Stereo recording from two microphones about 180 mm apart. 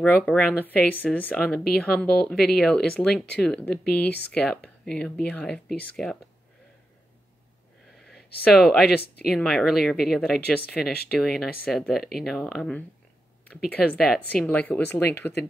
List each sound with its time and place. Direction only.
0.0 s speech: 5° left (ahead or behind)
8.1 s speech: centre (ahead or behind)
9.0 s speech: 60° left (ahead or behind)
9.3 s speech: centre (ahead or behind)